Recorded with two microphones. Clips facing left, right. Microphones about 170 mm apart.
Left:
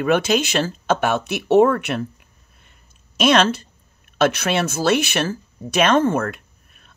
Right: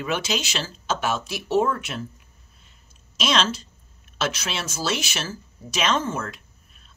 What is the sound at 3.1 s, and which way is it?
Speech, 55° left (ahead or behind).